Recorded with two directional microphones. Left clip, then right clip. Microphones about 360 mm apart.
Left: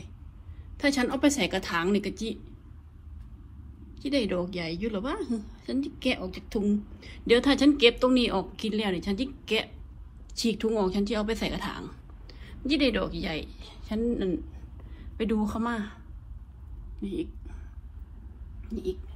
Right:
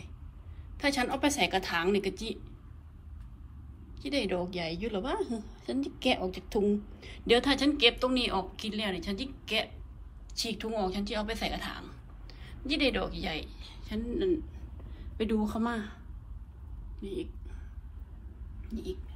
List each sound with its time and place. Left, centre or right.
0.7 s a woman's voice: centre
3.9 s a woman's voice: centre
17.0 s a woman's voice: centre